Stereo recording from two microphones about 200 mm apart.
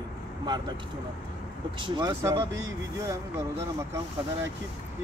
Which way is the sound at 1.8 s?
20° right (ahead or behind).